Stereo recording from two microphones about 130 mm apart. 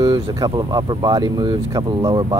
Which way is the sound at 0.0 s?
30° right (ahead or behind).